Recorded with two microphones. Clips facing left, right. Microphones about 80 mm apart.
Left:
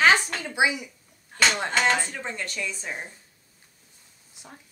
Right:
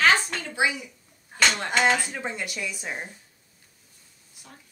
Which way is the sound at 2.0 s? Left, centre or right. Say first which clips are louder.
Right 1 dB; centre.